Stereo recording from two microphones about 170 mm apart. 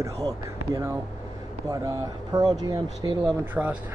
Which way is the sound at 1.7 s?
20° right (ahead or behind).